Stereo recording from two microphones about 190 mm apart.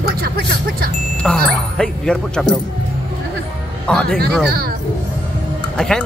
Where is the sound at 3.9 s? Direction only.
5° left (ahead or behind).